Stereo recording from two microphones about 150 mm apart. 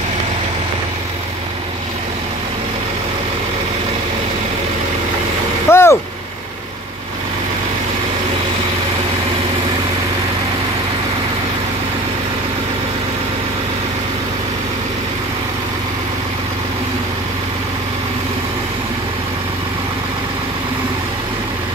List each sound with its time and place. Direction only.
5.7 s vehicle: 15° left (ahead or behind)